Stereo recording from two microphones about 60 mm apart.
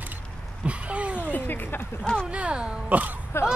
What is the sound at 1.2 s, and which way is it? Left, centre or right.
Speech, left.